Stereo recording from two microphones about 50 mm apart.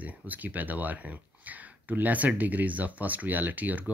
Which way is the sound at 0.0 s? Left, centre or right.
Right.